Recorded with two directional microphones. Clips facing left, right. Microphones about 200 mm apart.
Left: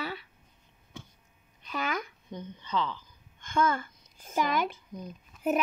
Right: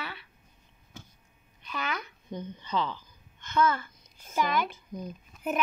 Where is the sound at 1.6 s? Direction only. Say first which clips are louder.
Left 2 dB; 40° left (ahead or behind).